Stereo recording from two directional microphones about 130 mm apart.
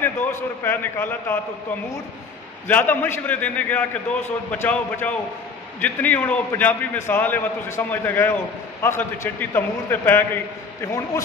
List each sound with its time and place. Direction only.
0.0 s a man's voice: 15° left (ahead or behind)
2.7 s a man's voice: 15° left (ahead or behind)